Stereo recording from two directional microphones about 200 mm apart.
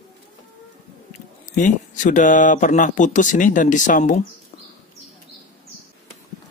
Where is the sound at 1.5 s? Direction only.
40° left (ahead or behind).